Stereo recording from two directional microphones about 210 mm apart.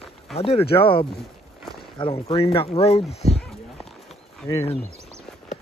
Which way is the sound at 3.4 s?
Centre (ahead or behind).